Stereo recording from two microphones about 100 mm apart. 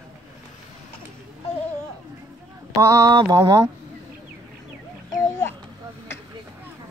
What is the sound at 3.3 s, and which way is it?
Speech, 45° right (ahead or behind).